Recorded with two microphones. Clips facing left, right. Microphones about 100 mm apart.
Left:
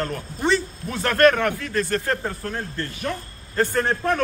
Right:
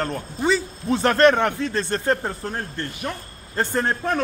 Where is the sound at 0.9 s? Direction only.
25° right (ahead or behind).